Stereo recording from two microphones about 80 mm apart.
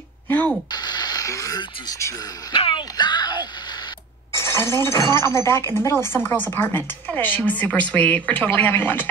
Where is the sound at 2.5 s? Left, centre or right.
Left.